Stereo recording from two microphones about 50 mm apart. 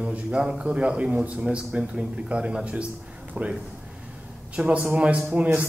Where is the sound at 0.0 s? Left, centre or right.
Right.